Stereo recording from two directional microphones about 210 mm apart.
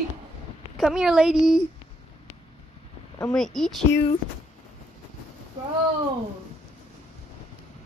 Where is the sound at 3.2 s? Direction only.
5° left (ahead or behind).